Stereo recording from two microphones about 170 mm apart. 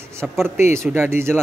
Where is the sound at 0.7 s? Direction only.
15° right (ahead or behind).